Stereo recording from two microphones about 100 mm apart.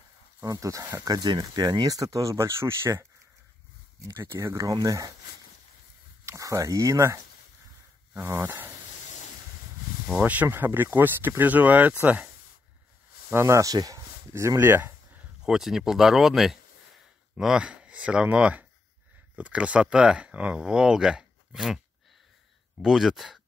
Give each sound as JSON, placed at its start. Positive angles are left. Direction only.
{"t": 0.4, "sound": "speech", "side_deg": -35}
{"t": 4.1, "sound": "speech", "side_deg": -30}
{"t": 6.2, "sound": "speech", "side_deg": -35}
{"t": 8.2, "sound": "speech", "side_deg": -25}
{"t": 10.0, "sound": "speech", "side_deg": -10}
{"t": 13.3, "sound": "speech", "side_deg": -30}
{"t": 15.4, "sound": "speech", "side_deg": -5}